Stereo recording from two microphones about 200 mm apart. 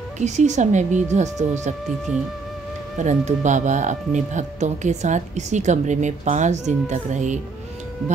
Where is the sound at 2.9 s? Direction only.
35° right (ahead or behind).